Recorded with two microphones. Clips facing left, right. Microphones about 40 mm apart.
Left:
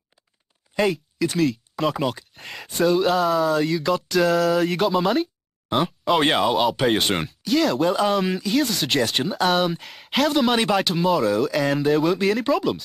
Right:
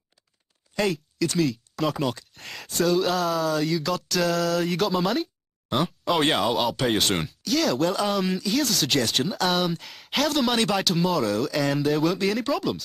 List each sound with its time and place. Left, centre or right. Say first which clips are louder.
0.7 s speech: left 3 dB; centre